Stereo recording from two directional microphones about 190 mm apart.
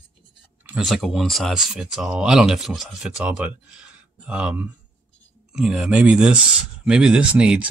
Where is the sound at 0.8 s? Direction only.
Centre (ahead or behind).